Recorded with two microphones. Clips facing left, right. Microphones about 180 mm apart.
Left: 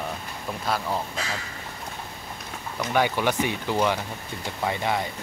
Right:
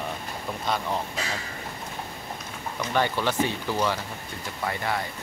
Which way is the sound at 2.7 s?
10° left (ahead or behind).